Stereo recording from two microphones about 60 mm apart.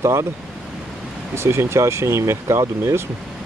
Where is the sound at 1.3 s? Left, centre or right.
Right.